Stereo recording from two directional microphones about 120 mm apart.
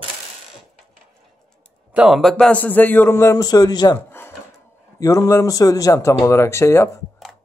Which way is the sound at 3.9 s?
20° left (ahead or behind).